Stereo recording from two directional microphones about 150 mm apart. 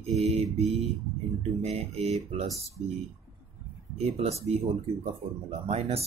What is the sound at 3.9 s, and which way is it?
Mantra, 45° right (ahead or behind).